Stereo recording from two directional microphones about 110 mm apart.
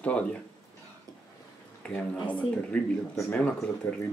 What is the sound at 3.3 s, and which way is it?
Speech, 10° left (ahead or behind).